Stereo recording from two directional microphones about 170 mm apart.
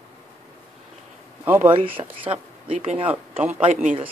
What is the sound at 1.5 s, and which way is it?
Speech, 10° right (ahead or behind).